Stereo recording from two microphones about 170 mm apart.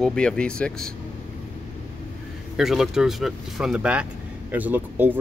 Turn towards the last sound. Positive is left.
turn(degrees=-10)  # may be behind; listen again after turning